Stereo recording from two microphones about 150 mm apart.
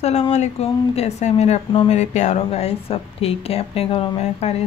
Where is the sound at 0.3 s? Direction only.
45° left (ahead or behind).